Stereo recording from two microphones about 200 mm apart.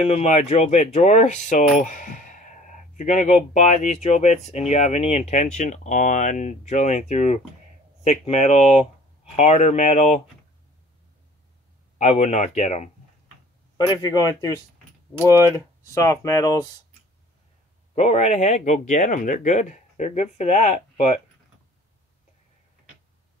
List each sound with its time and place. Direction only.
0.0 s speech: 35° left (ahead or behind)
12.0 s speech: 35° left (ahead or behind)
13.7 s a man's voice: 20° left (ahead or behind)
15.8 s speech: 15° left (ahead or behind)
17.9 s speech: 35° left (ahead or behind)